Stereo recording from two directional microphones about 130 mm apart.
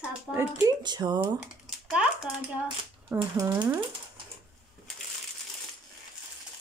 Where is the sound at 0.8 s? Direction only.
35° right (ahead or behind).